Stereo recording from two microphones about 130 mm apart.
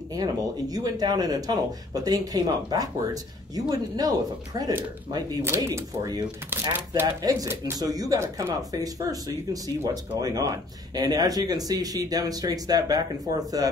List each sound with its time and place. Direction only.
0.1 s speech: 30° right (ahead or behind)
5.4 s speech: 20° right (ahead or behind)